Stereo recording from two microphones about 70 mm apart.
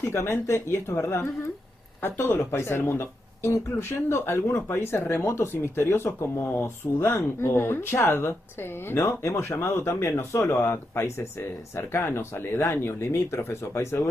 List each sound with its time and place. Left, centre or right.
0.0 s speech: left